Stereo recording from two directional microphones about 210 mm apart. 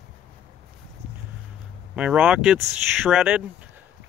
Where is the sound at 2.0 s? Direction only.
5° right (ahead or behind).